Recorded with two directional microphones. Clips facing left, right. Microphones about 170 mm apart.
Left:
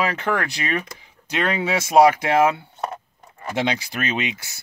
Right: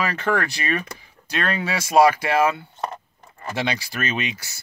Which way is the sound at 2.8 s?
5° left (ahead or behind).